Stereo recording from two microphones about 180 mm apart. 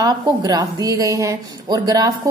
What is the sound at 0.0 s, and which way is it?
A woman's voice, 20° right (ahead or behind).